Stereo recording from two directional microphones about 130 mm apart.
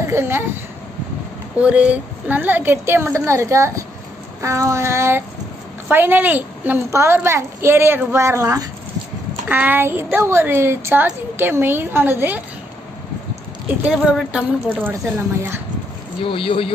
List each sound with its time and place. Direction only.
0.0 s speech: 20° right (ahead or behind)
1.6 s a woman's voice: 10° right (ahead or behind)
13.8 s a woman's voice: 5° right (ahead or behind)
16.3 s speech: 45° left (ahead or behind)